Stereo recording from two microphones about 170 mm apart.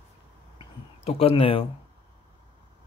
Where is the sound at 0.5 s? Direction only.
35° left (ahead or behind).